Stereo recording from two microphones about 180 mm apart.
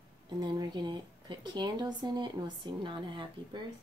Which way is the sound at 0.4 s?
25° right (ahead or behind).